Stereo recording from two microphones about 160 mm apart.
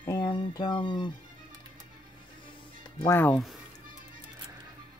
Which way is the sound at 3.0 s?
15° left (ahead or behind).